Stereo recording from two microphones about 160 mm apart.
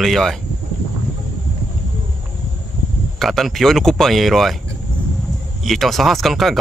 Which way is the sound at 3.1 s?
Centre (ahead or behind).